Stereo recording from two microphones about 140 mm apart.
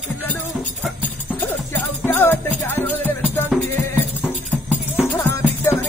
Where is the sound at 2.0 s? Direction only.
15° left (ahead or behind).